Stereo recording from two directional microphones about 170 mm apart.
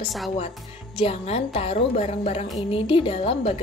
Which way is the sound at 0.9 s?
35° left (ahead or behind).